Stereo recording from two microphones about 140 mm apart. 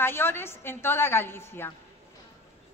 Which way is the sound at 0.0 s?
15° left (ahead or behind).